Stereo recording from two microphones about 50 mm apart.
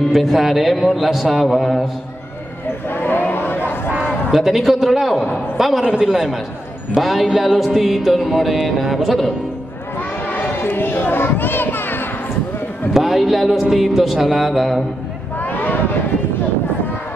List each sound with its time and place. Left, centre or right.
0.1 s music: centre
2.9 s crowd: left
3.9 s a man's voice: centre
5.6 s music: centre
9.9 s a sound: left
10.6 s children playing: left
12.9 s music: centre
15.3 s vehicle: left